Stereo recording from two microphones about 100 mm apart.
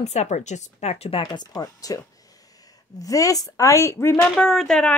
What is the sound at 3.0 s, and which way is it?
Speech, 35° left (ahead or behind).